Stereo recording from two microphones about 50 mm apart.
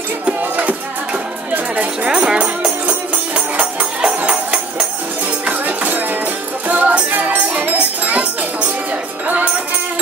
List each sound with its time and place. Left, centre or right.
0.4 s music: right
2.0 s music: centre
2.6 s music: right
4.0 s music: right